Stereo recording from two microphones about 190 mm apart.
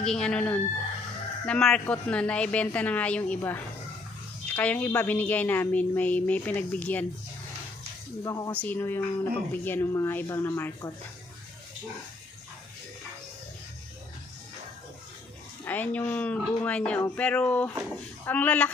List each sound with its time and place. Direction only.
0.0 s a woman's voice: 5° left (ahead or behind)
8.2 s a woman's voice: 15° left (ahead or behind)
15.6 s a woman's voice: 10° left (ahead or behind)